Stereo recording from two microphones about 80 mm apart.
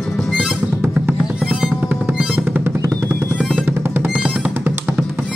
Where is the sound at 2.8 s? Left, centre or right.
Right.